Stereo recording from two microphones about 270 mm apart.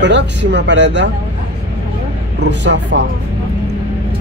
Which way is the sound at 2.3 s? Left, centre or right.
Right.